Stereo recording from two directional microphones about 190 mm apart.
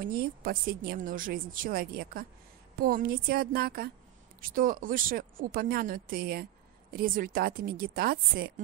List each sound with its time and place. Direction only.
0.0 s a woman's voice: 50° right (ahead or behind)